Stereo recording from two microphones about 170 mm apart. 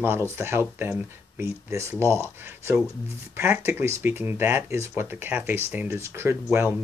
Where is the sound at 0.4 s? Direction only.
15° right (ahead or behind).